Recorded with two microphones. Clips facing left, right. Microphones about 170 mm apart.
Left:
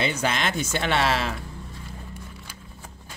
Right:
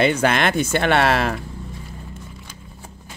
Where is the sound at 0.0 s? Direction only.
60° right (ahead or behind).